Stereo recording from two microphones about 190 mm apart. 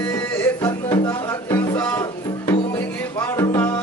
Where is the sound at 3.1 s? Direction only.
15° left (ahead or behind).